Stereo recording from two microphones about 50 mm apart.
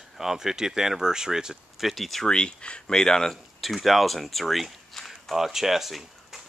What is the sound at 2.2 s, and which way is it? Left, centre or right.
Speech, centre.